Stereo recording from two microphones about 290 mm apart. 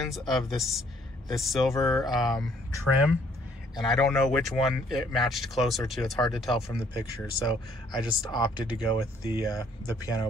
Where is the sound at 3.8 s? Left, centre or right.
Centre.